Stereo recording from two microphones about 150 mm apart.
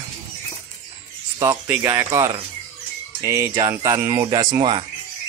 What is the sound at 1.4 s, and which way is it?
Speech, 20° right (ahead or behind).